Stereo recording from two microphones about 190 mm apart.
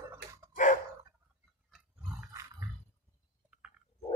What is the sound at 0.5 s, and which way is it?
Dog, 40° left (ahead or behind).